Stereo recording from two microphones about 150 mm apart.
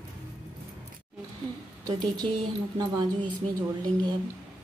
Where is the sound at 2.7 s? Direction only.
30° right (ahead or behind).